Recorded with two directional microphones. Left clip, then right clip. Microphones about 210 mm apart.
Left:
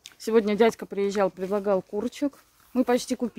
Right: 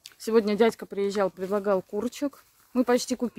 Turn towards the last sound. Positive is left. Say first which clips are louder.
# even
turn(degrees=-15)  # may be behind; listen again after turning